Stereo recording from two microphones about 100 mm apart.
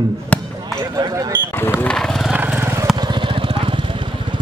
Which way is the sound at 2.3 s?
20° right (ahead or behind).